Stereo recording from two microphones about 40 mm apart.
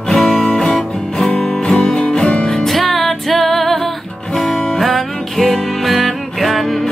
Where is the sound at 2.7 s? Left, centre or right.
Centre.